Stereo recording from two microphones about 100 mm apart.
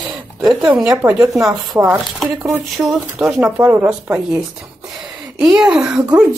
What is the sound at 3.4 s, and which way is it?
Speech, 15° right (ahead or behind).